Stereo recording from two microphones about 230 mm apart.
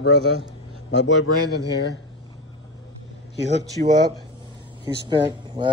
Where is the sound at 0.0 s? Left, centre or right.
Left.